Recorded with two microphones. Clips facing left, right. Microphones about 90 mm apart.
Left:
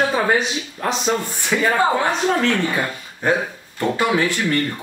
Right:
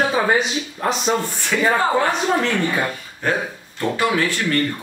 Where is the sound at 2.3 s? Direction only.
5° right (ahead or behind).